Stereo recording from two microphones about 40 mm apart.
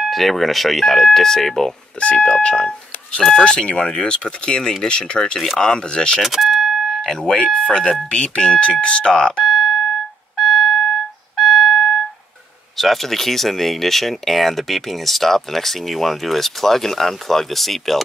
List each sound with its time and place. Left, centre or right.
0.1 s speech: centre
2.0 s speech: left
3.2 s speech: centre
3.4 s speech: left
6.2 s vehicle: centre
6.9 s a sound: centre
7.5 s speech: centre
9.4 s doorbell: centre
10.3 s music: centre
12.7 s speech: centre